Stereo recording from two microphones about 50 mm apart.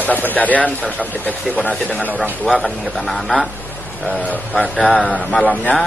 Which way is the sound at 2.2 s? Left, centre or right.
Centre.